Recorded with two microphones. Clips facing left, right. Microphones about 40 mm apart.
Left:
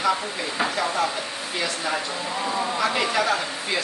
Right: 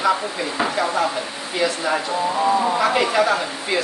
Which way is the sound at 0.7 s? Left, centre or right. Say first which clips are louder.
Right 4 dB; centre.